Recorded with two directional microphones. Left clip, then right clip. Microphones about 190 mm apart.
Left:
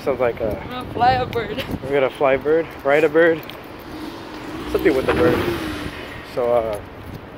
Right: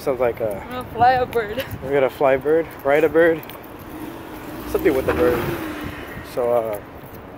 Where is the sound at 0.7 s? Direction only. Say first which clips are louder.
Right 1 dB; 50° right (ahead or behind).